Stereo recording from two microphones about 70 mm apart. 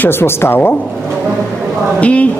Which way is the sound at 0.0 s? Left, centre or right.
Left.